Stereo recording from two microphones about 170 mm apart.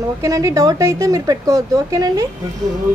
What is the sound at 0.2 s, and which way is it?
Speech, 20° right (ahead or behind).